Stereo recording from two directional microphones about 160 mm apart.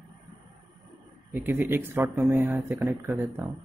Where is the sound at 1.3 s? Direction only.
15° right (ahead or behind).